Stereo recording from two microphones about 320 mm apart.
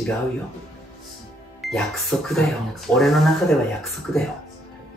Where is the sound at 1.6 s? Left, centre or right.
Centre.